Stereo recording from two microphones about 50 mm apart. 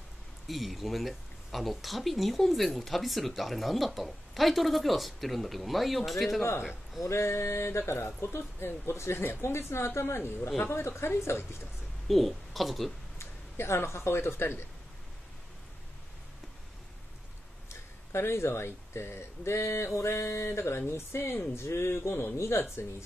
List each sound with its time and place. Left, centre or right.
0.5 s speech: centre
7.1 s speech: left
12.1 s speech: centre
13.2 s speech: left
17.6 s speech: left
22.6 s speech: left